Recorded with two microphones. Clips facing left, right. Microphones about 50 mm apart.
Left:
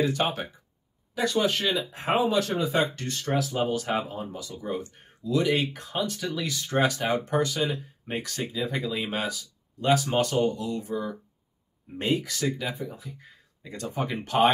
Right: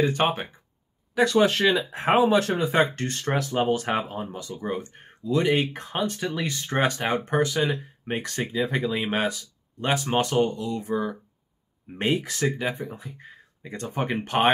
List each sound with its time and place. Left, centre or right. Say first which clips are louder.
0.0 s speech: right 3 dB; right
1.1 s speech: right 5 dB; right